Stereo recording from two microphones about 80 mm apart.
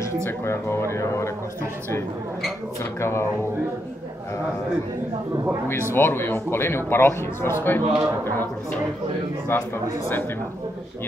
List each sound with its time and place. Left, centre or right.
0.2 s speech: left
2.8 s speech: left
5.9 s a man's voice: left
9.5 s a man's voice: left